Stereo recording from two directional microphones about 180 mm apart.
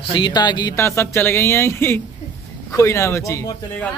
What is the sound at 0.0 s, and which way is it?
Speech, 25° left (ahead or behind).